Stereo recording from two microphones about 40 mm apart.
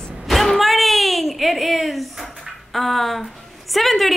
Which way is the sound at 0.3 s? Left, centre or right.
Centre.